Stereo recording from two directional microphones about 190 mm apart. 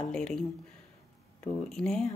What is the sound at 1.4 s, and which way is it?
Speech, centre (ahead or behind).